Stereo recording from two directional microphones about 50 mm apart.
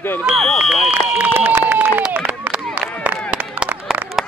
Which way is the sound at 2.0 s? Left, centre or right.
Right.